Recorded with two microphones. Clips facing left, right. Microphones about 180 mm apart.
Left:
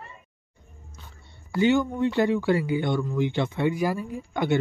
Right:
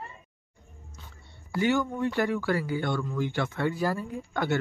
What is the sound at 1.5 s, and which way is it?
Speech, 20° left (ahead or behind).